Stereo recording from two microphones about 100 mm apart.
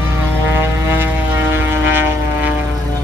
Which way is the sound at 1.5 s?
25° right (ahead or behind).